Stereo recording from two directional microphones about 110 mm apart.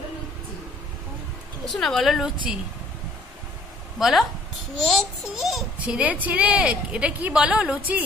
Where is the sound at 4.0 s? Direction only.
Centre (ahead or behind).